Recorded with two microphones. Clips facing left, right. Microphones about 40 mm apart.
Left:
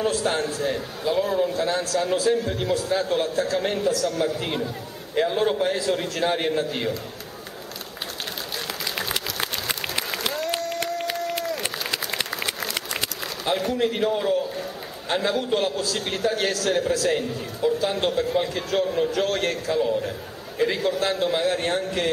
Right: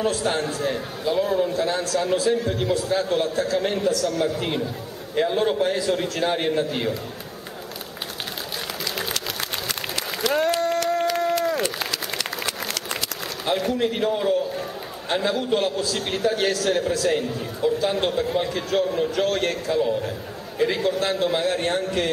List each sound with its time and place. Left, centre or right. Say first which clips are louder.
0.0 s a man's voice: even; centre
9.1 s applause: left 1 dB; centre
13.5 s a man's voice: right 1 dB; centre